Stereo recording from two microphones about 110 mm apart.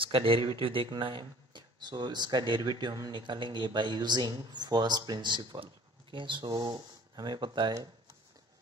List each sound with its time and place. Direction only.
0.0 s speech: 55° right (ahead or behind)